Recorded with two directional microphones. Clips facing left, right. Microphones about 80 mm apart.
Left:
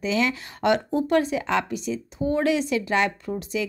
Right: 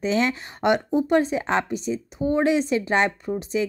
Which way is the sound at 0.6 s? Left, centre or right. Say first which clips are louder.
Right 1 dB; right.